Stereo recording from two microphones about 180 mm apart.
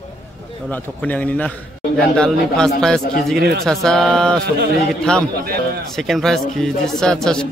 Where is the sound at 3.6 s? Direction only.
5° left (ahead or behind).